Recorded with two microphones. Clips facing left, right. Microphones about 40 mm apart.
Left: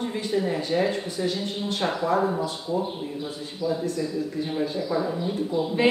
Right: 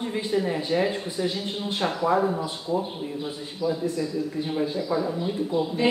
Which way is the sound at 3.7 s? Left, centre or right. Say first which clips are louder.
Even; centre.